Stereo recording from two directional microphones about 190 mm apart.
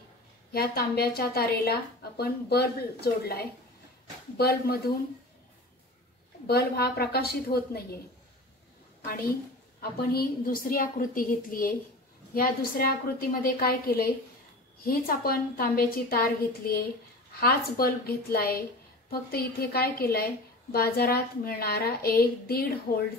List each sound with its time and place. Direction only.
0.5 s a woman's voice: 55° left (ahead or behind)
6.4 s a woman's voice: 55° left (ahead or behind)
9.0 s a woman's voice: 50° left (ahead or behind)